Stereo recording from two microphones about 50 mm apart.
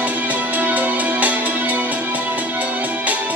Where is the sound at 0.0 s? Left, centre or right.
Right.